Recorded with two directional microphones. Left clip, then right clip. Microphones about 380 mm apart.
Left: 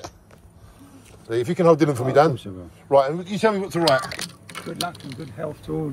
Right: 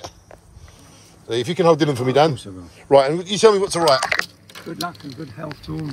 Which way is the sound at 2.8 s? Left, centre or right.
Right.